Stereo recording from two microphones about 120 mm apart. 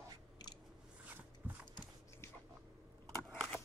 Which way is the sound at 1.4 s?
20° right (ahead or behind).